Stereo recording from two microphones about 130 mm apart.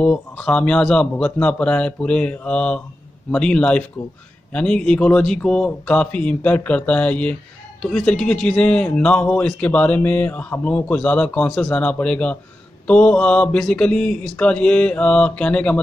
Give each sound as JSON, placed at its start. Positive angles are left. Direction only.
{"t": 0.0, "sound": "speech", "side_deg": 10}